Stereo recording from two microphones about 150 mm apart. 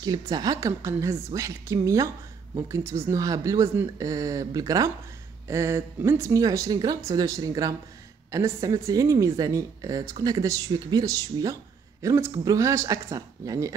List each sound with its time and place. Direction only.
0.0 s speech: 25° right (ahead or behind)